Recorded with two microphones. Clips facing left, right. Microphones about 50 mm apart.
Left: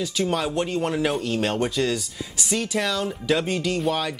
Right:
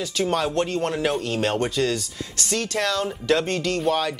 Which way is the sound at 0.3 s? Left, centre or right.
Centre.